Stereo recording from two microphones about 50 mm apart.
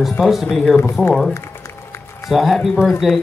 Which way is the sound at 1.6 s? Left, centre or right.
Left.